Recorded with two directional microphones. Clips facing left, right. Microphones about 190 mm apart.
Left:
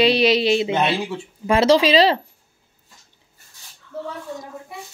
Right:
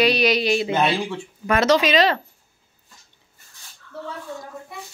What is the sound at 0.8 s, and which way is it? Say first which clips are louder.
Speech: even; 5° left (ahead or behind).